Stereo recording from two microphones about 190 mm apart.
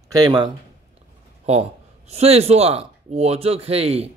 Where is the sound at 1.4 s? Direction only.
35° right (ahead or behind).